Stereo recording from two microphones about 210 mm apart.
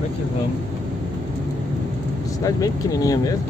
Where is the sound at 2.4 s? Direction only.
15° left (ahead or behind).